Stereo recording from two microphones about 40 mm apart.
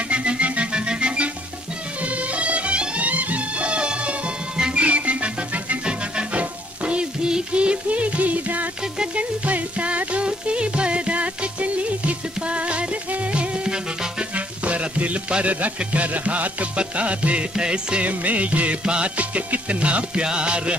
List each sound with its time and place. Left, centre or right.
0.1 s music: right
4.8 s music: right
18.0 s music: right